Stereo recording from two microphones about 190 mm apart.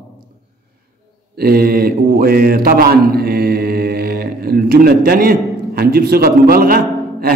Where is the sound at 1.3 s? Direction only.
55° right (ahead or behind).